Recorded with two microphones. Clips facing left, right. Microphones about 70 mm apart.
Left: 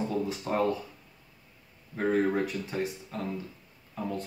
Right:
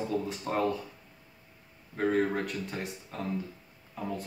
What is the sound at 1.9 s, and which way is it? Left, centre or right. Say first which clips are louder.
Speech: left 1 dB; centre.